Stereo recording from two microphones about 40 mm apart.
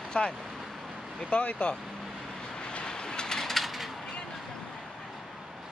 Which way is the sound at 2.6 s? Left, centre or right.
Left.